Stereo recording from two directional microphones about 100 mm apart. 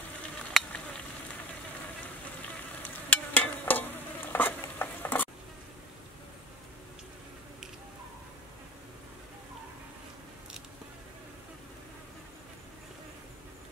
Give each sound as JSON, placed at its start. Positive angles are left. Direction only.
{"t": 0.5, "sound": "stir", "side_deg": 0}
{"t": 3.1, "sound": "stir", "side_deg": 15}